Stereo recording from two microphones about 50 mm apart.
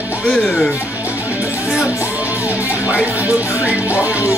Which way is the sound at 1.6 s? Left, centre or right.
Centre.